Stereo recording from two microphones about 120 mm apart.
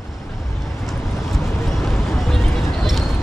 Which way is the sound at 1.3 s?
Centre (ahead or behind).